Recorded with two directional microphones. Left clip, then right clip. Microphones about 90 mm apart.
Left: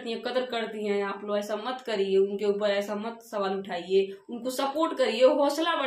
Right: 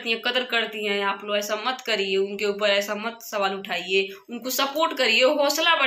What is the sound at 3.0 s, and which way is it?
A woman's voice, 35° left (ahead or behind).